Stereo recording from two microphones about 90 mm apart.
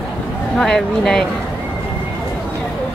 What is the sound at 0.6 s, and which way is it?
Speech, 5° left (ahead or behind).